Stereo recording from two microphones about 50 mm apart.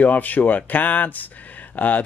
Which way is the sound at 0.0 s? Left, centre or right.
Left.